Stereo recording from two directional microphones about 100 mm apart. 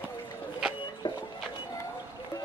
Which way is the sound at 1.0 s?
50° left (ahead or behind).